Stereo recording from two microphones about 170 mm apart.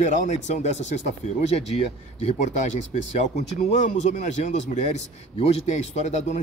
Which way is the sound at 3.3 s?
45° left (ahead or behind).